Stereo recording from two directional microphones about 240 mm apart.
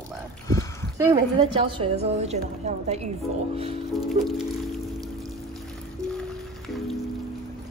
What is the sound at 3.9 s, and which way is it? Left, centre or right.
Music, centre.